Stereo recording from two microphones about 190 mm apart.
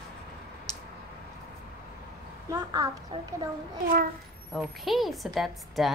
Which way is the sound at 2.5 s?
20° right (ahead or behind).